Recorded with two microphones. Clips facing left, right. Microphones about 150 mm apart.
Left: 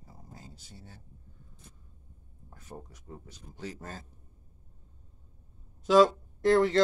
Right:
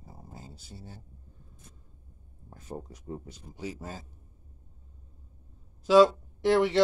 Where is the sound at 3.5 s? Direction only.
10° right (ahead or behind).